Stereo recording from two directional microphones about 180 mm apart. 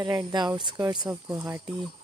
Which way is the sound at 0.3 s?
25° right (ahead or behind).